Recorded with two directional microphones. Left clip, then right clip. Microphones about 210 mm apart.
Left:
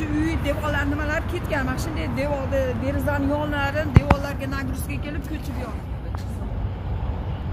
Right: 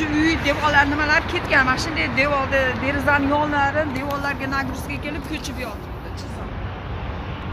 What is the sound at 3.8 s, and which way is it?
Speech, 60° left (ahead or behind).